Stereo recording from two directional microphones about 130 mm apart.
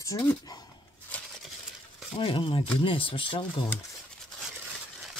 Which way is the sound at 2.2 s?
45° left (ahead or behind).